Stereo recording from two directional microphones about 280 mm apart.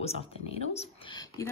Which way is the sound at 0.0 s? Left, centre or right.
Left.